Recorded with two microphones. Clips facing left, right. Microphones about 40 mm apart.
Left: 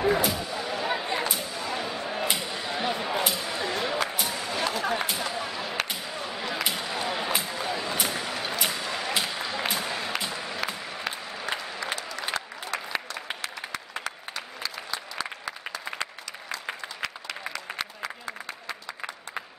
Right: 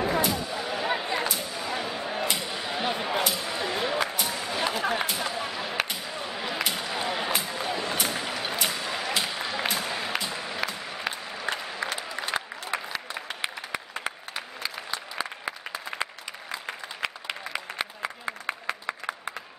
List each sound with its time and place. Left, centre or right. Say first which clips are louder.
0.0 s a sound: left 1 dB; centre
10.3 s music: right 1 dB; centre
10.9 s applause: right 1 dB; centre
12.7 s applause: right 2 dB; right
14.0 s applause: right 1 dB; right
17.0 s a sound: right 3 dB; right